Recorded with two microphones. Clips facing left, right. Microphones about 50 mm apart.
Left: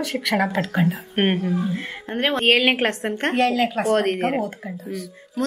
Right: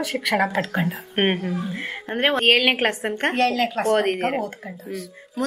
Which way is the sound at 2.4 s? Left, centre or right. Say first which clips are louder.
Left 1 dB; centre.